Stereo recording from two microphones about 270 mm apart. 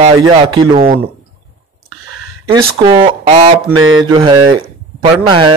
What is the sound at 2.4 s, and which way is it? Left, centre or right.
Speech, centre.